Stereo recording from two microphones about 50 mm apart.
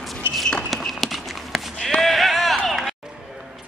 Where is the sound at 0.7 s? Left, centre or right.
Centre.